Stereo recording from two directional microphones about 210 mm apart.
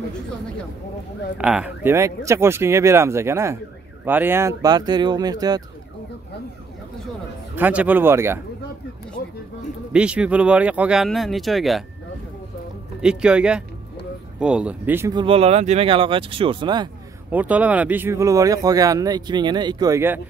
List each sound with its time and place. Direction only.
1.4 s speech: 5° right (ahead or behind)
7.5 s speech: 10° right (ahead or behind)
9.9 s speech: 5° right (ahead or behind)
13.0 s speech: 5° right (ahead or behind)
15.2 s speech: 30° right (ahead or behind)
17.3 s speech: 5° right (ahead or behind)